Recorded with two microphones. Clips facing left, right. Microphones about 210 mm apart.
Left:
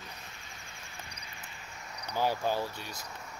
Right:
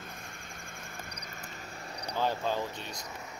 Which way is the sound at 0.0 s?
50° right (ahead or behind).